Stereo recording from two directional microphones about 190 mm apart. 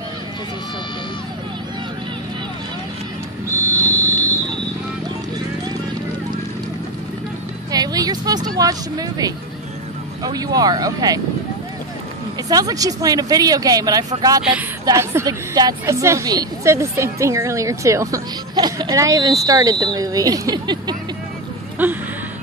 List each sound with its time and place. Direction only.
3.5 s vehicle: 10° left (ahead or behind)
7.7 s music: 20° right (ahead or behind)
8.5 s speech: 20° right (ahead or behind)
12.4 s a woman's voice: 20° right (ahead or behind)
21.8 s a woman's voice: 10° right (ahead or behind)